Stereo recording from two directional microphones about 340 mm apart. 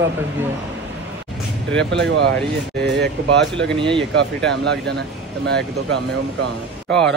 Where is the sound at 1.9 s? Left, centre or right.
Right.